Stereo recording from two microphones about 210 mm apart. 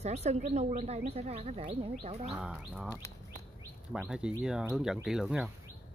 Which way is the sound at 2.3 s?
5° right (ahead or behind).